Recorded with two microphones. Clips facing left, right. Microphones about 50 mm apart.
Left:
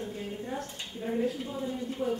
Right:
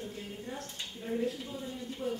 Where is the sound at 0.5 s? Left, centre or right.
Centre.